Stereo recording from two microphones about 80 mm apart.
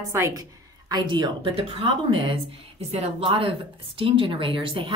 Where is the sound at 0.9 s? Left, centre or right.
Right.